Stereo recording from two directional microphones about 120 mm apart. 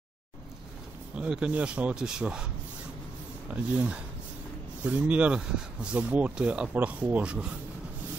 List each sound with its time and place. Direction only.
1.1 s speech: 10° right (ahead or behind)